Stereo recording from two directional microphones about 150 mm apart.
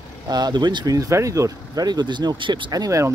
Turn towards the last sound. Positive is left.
turn(degrees=-20)  # may be behind; listen again after turning